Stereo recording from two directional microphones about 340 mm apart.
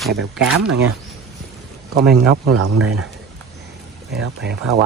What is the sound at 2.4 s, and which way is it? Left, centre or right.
Speech, right.